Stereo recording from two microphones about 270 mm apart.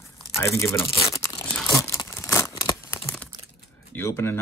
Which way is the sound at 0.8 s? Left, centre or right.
Centre.